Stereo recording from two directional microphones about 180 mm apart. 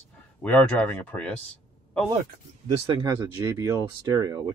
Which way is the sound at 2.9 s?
25° right (ahead or behind).